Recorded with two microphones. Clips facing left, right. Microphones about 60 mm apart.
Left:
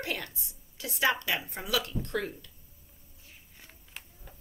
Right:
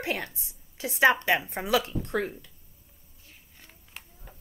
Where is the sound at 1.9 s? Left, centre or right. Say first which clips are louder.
Right 3 dB; centre.